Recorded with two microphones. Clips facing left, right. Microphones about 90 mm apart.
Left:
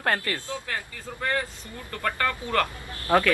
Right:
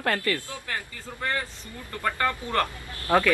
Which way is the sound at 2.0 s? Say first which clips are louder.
Right 1 dB; 15° right (ahead or behind).